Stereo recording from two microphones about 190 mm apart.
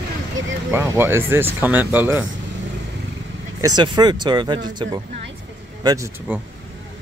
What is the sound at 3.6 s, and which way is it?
A man's voice, 20° right (ahead or behind).